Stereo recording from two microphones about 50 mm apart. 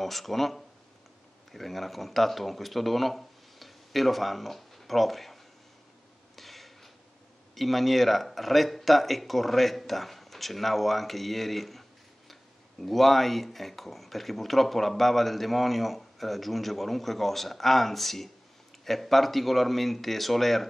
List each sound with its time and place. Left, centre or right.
0.0 s speech: centre
6.3 s a sound: centre
7.5 s speech: centre
12.8 s speech: centre